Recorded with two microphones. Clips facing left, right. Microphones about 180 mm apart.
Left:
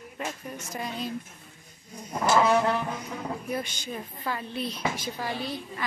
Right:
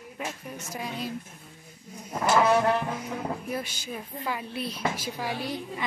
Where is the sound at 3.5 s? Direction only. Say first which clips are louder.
Left 1 dB; 5° right (ahead or behind).